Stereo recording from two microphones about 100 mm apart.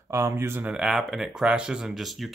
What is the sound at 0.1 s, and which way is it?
Speech, 30° right (ahead or behind).